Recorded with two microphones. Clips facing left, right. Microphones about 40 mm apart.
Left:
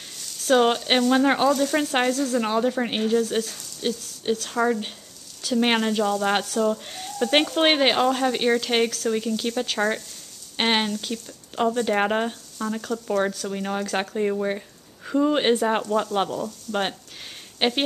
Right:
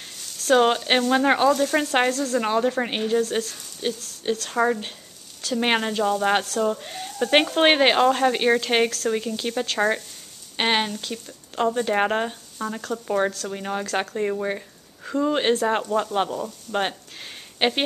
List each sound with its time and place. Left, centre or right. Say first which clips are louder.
0.2 s speech: right 1 dB; centre
10.6 s a sound: even; centre
11.0 s speech: left 1 dB; centre
13.5 s speech: even; centre
15.9 s speech: even; centre
16.7 s speech: right 1 dB; right
17.6 s speech: right 1 dB; centre